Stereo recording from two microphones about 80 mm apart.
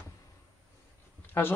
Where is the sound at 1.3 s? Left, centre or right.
Left.